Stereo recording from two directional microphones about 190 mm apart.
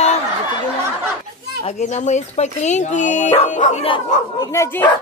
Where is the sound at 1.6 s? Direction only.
35° left (ahead or behind).